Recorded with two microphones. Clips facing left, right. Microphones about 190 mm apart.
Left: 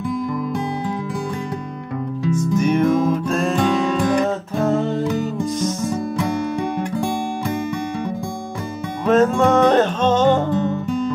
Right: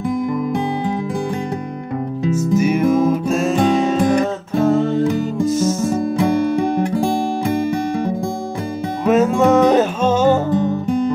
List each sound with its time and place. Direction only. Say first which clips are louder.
2.5 s music: right 2 dB; 5° right (ahead or behind)
3.5 s music: right 4 dB; 40° right (ahead or behind)
5.4 s music: right 5 dB; 5° right (ahead or behind)
5.8 s music: right 4 dB; 25° right (ahead or behind)
9.0 s music: right 1 dB; 10° right (ahead or behind)